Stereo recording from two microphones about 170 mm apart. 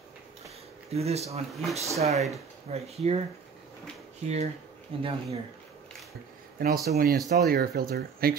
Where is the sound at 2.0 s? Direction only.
40° right (ahead or behind).